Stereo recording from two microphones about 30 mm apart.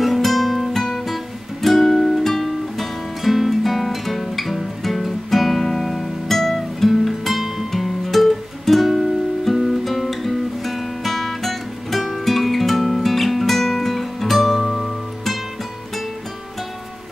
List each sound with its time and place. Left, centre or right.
0.0 s guitar: centre
0.9 s music: centre
3.2 s music: centre
5.6 s music: centre
14.6 s music: centre